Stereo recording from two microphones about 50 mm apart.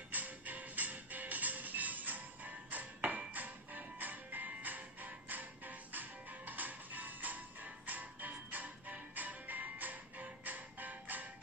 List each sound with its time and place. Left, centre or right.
0.1 s music: right